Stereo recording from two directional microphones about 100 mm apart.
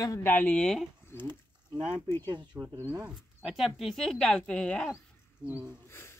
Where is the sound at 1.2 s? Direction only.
50° right (ahead or behind).